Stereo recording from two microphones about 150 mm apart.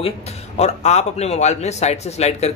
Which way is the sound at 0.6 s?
45° left (ahead or behind).